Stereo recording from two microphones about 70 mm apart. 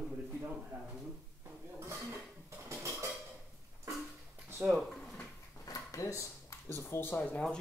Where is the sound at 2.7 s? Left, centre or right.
Right.